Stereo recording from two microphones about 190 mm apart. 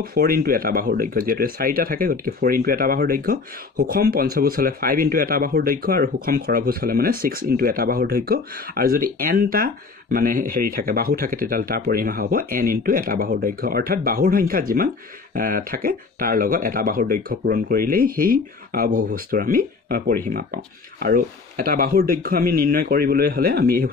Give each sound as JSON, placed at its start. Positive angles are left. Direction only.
{"t": 0.0, "sound": "speech", "side_deg": -50}